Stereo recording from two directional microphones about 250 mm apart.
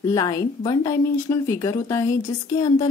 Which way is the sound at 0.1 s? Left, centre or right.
Centre.